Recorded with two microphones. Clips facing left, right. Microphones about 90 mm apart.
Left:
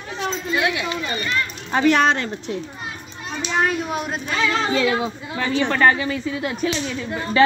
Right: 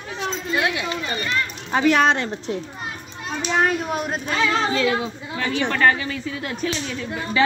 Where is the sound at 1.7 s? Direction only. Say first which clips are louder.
Even; 5° right (ahead or behind).